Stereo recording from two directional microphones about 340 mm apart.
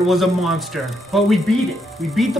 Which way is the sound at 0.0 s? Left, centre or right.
Centre.